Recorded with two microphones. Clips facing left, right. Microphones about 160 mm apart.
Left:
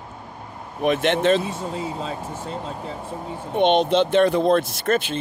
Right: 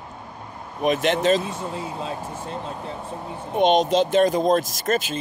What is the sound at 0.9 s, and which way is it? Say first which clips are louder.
Speech: left 1 dB; 55° left (ahead or behind).